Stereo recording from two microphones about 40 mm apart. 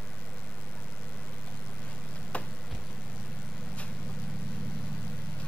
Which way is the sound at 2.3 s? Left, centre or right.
Left.